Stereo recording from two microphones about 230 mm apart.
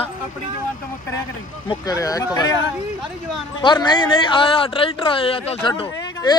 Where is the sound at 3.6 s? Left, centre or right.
Centre.